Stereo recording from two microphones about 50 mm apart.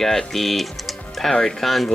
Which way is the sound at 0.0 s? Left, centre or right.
Centre.